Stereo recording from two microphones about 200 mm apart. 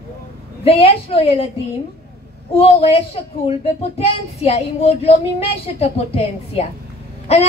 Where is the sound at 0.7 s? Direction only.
30° left (ahead or behind).